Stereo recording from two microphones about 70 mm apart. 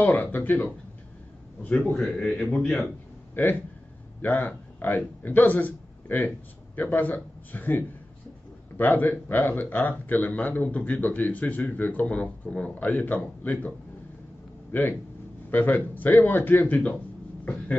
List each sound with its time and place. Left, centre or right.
0.0 s speech: left
2.0 s a man's voice: centre
3.4 s a man's voice: left